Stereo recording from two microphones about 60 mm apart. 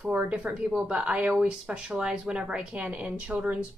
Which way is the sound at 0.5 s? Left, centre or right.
Centre.